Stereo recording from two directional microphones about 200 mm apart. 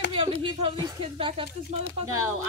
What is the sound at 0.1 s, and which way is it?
Speech, 25° right (ahead or behind).